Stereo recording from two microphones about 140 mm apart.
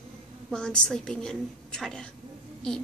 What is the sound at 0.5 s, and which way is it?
A woman's voice, 5° left (ahead or behind).